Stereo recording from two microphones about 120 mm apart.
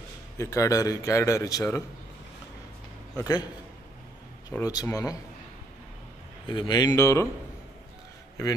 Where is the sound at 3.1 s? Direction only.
30° left (ahead or behind).